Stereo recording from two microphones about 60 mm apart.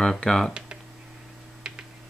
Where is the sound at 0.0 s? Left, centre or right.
Centre.